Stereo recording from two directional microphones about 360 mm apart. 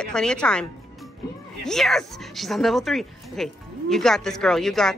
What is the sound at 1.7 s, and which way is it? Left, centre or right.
Speech, centre.